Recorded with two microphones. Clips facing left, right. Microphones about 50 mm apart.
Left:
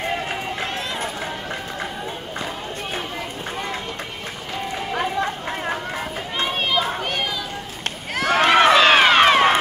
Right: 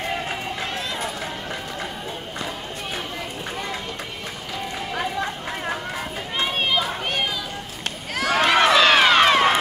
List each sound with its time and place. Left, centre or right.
4.9 s chatter: left
8.1 s run: left